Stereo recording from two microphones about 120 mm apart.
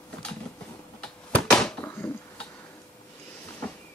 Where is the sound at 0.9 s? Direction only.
5° left (ahead or behind).